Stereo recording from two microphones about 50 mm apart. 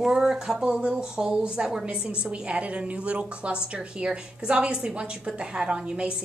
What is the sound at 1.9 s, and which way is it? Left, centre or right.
A woman's voice, right.